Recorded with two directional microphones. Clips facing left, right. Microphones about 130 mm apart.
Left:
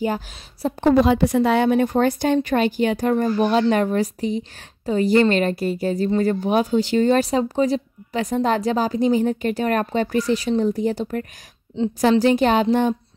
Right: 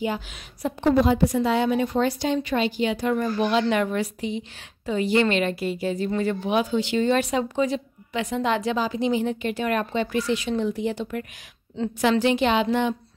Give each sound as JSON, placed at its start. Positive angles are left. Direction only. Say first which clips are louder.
{"t": 0.0, "sound": "speech", "louder": "left 4 dB", "side_deg": 40}
{"t": 0.8, "sound": "a woman's voice", "louder": "left 3 dB", "side_deg": 80}